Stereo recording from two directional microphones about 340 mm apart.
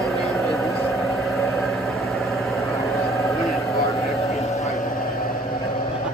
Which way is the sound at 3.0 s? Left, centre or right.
Centre.